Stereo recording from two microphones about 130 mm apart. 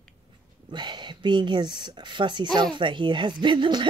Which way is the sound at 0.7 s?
35° right (ahead or behind).